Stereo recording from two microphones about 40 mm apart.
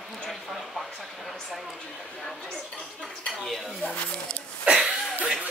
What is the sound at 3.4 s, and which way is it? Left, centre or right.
Dishes, centre.